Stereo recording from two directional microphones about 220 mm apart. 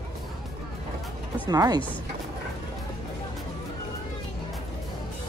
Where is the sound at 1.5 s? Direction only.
20° right (ahead or behind).